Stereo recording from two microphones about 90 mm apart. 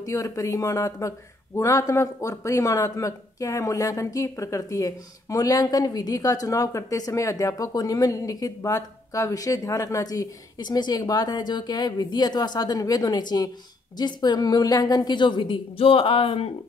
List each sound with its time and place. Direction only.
0.0 s a woman's voice: 40° left (ahead or behind); by 16.5 s 90° left